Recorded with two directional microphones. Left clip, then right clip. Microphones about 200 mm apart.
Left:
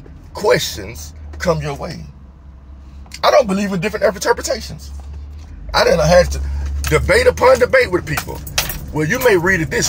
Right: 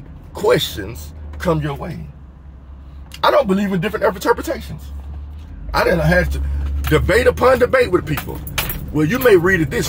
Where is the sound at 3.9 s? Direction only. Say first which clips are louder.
Left 1 dB; 15° right (ahead or behind).